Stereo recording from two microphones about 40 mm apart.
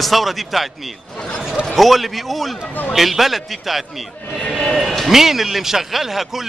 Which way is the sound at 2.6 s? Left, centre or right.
Left.